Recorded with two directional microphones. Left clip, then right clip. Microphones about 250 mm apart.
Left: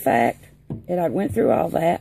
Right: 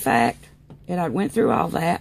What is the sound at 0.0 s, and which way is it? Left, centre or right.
Speech, right.